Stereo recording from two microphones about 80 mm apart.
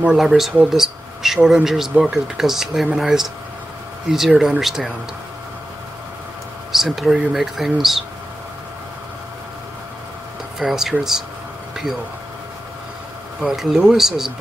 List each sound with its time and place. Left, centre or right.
0.0 s speech: centre
4.3 s speech: centre
6.7 s speech: centre
10.6 s speech: centre
11.7 s a sound: centre
13.4 s speech: centre